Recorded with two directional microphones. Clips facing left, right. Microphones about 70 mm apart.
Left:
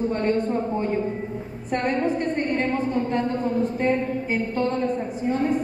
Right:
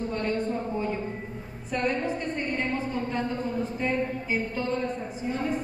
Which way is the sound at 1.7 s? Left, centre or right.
Left.